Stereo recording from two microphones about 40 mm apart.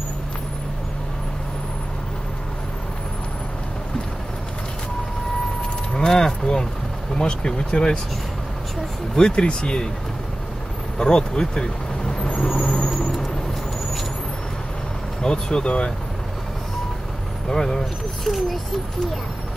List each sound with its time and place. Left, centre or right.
5.9 s speech: centre
9.1 s speech: left
11.0 s speech: centre
12.5 s vehicle: left
12.9 s vehicle: centre
15.2 s speech: centre
17.5 s speech: centre